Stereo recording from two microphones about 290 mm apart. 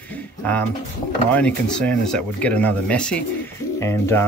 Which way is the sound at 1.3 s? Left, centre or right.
Centre.